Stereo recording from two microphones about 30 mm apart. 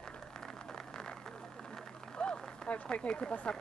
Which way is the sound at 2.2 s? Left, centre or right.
Left.